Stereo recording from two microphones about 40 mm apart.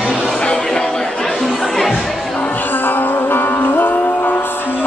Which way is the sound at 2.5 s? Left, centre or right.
Left.